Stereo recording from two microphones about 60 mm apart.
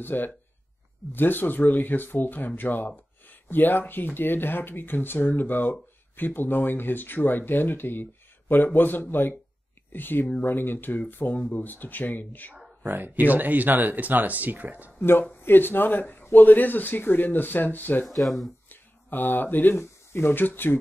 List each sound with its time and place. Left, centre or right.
0.0 s speech: left
12.8 s speech: right
15.0 s speech: left
18.0 s speech: centre
18.7 s speech: left